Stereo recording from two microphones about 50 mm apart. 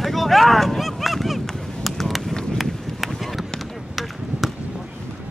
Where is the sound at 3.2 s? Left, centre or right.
Centre.